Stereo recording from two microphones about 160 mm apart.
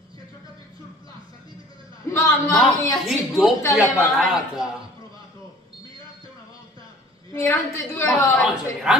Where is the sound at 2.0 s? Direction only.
15° left (ahead or behind).